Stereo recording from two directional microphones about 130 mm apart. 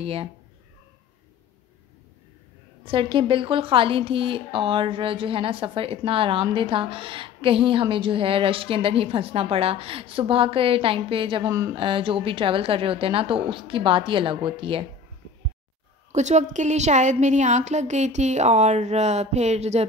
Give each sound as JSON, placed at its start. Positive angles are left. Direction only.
{"t": 0.0, "sound": "a woman's voice", "side_deg": -45}
{"t": 2.8, "sound": "a woman's voice", "side_deg": -40}
{"t": 16.1, "sound": "a woman's voice", "side_deg": -65}